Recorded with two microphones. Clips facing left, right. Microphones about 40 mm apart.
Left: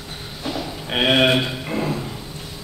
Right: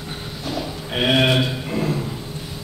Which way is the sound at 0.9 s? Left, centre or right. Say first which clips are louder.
Left 1 dB; centre.